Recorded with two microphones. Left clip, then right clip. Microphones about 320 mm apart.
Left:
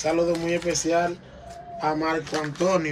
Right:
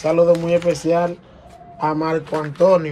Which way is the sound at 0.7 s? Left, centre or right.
Right.